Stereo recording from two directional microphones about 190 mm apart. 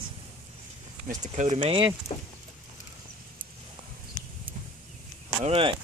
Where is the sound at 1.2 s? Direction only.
40° right (ahead or behind).